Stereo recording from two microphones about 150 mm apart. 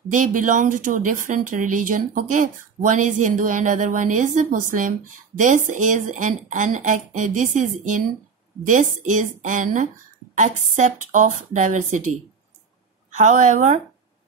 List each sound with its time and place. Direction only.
0.1 s speech: 60° right (ahead or behind)
13.1 s speech: 55° right (ahead or behind)